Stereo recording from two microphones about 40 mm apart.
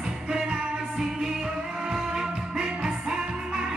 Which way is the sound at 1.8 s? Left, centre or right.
Centre.